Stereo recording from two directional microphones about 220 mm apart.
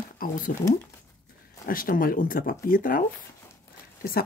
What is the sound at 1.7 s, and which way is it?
Speech, 40° left (ahead or behind).